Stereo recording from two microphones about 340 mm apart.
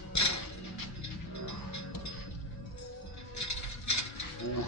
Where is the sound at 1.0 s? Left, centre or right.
Left.